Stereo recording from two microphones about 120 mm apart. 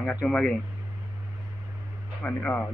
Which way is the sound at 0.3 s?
5° left (ahead or behind).